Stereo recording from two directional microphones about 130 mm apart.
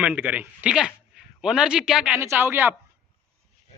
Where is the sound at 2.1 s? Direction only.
20° right (ahead or behind).